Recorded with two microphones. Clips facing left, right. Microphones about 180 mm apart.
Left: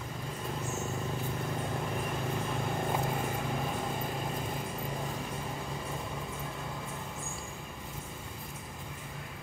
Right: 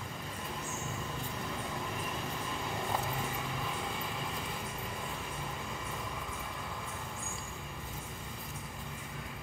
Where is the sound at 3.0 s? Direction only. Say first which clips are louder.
Left 4 dB; 50° left (ahead or behind).